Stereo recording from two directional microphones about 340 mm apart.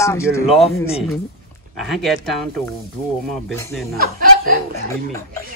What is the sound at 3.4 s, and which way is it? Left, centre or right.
Speech, centre.